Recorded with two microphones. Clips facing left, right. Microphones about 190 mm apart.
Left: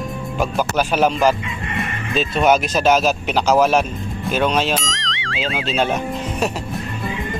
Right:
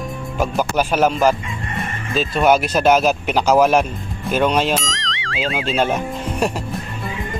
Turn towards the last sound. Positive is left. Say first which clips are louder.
# right 1 dB
turn(degrees=-10)  # may be behind; listen again after turning